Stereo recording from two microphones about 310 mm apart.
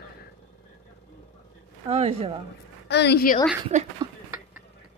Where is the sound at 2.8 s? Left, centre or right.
Left.